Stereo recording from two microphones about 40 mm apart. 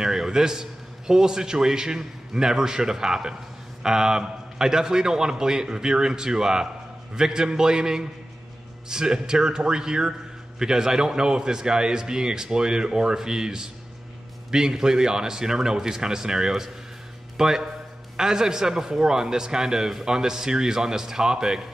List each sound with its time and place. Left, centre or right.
0.0 s a man's voice: centre